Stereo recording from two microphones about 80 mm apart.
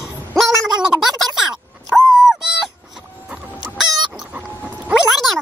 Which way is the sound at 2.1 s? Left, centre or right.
Centre.